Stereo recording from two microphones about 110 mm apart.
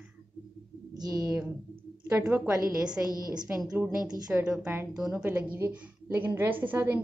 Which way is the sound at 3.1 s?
35° right (ahead or behind).